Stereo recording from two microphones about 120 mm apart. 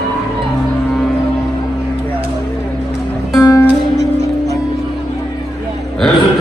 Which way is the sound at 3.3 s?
30° left (ahead or behind).